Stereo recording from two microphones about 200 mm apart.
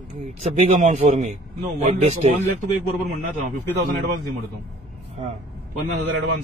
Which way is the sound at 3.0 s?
40° right (ahead or behind).